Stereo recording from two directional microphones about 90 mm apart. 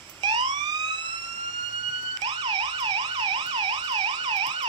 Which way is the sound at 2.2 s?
55° right (ahead or behind).